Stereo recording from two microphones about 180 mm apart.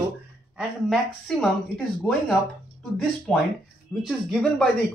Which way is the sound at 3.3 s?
5° left (ahead or behind).